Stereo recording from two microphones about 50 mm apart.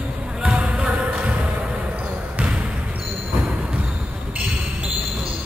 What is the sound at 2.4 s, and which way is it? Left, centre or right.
Basketball bounce, right.